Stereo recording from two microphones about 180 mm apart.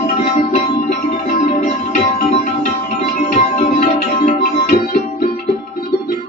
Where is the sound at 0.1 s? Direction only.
40° left (ahead or behind).